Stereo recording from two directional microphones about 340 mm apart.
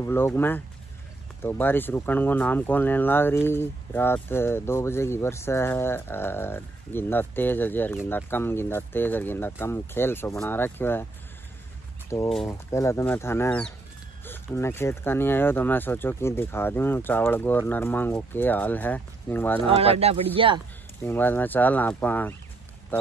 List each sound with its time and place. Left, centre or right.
0.0 s speech: centre
12.1 s speech: centre
19.7 s speech: centre
21.0 s speech: centre